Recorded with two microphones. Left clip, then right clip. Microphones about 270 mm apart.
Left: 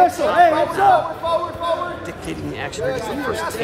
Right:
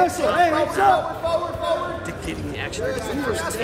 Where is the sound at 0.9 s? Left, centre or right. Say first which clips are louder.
Left 5 dB; left.